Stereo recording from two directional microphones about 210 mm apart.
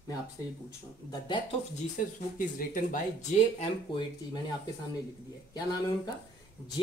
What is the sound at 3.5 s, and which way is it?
Speech, 25° left (ahead or behind).